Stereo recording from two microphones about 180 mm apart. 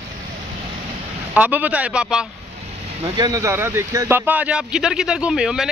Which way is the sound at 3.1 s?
20° right (ahead or behind).